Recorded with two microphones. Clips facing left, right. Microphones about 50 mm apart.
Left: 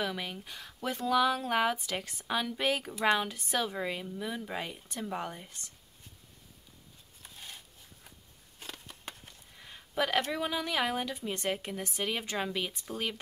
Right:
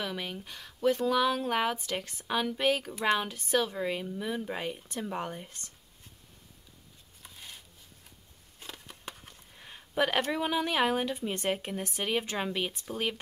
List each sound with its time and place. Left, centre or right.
0.0 s a woman's voice: centre
3.9 s speech: centre
9.6 s a sound: centre
10.3 s speech: centre